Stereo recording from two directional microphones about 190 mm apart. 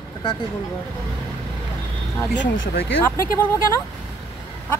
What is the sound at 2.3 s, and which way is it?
Speech, 70° left (ahead or behind).